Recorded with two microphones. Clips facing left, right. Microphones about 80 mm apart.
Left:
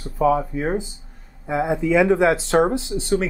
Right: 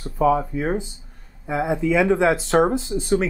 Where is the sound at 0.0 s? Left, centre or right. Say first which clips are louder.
Even; centre.